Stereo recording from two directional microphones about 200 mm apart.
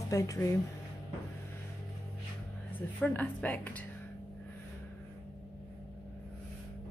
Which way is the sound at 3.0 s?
5° left (ahead or behind).